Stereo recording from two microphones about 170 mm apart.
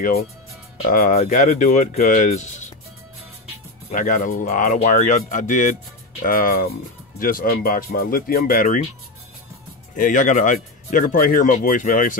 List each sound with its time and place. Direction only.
0.8 s speech: 50° left (ahead or behind)
3.9 s speech: 50° left (ahead or behind)
9.9 s speech: 50° left (ahead or behind)